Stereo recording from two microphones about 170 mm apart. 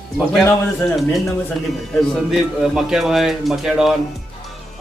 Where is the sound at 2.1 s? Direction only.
Centre (ahead or behind).